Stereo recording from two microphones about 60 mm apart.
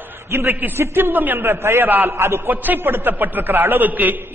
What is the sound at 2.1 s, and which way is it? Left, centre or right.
Speech, right.